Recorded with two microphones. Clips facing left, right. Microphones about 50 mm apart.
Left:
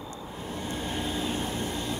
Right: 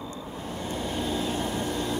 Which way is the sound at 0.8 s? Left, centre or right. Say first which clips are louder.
Right 3 dB; left.